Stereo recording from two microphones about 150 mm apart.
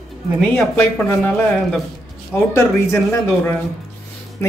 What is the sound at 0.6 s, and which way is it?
Speech, 10° left (ahead or behind).